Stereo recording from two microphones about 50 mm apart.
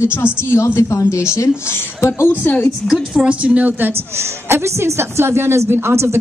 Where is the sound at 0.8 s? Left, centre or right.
Left.